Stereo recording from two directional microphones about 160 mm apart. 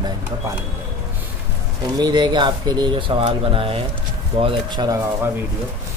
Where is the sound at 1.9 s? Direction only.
25° right (ahead or behind).